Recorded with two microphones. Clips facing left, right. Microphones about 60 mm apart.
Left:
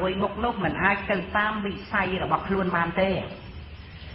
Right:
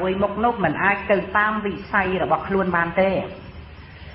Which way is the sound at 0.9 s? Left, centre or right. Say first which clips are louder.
Right 5 dB; right.